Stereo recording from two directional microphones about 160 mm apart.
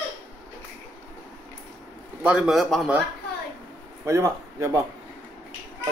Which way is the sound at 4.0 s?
15° right (ahead or behind).